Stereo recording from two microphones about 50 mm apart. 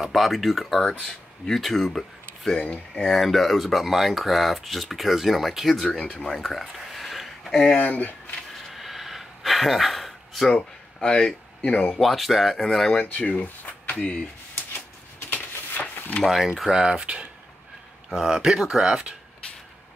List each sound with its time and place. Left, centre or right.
0.1 s speech: centre
2.5 s speech: centre
3.2 s speech: centre
5.9 s speech: centre
7.7 s speech: left
8.7 s gasp: centre
10.5 s speech: centre
11.6 s speech: left
12.0 s speech: centre
13.1 s speech: left
15.2 s a sound: left
16.3 s speech: centre
16.7 s speech: centre
18.1 s speech: centre